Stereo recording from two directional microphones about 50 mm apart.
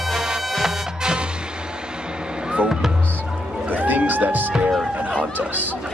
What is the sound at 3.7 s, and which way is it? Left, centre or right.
Music, right.